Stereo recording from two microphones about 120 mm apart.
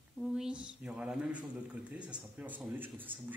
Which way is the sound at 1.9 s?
10° right (ahead or behind).